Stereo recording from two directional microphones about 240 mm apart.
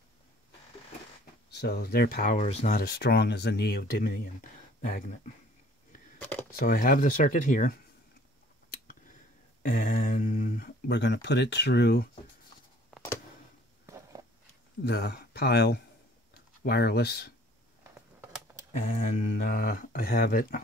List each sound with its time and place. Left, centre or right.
1.6 s speech: left
6.1 s a sound: centre
6.6 s speech: left
9.7 s speech: left
12.9 s a sound: centre
14.8 s speech: left
18.7 s speech: left